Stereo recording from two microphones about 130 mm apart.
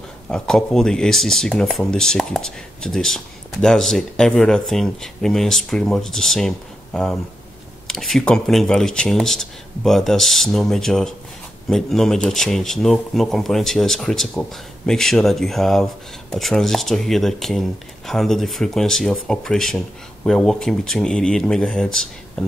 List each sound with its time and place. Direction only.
0.3 s speech: 5° left (ahead or behind)